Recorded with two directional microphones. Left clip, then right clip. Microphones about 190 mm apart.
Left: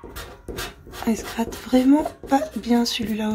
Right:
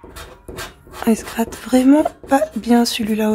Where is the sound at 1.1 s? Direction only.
20° right (ahead or behind).